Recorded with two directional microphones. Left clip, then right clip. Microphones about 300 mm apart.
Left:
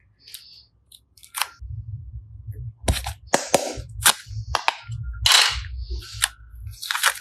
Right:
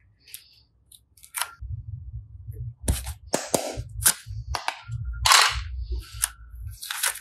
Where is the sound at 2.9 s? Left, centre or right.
Centre.